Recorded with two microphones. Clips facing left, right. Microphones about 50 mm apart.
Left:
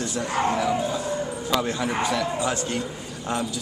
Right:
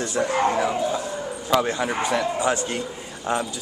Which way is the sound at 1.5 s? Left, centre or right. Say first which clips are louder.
Right 4 dB; centre.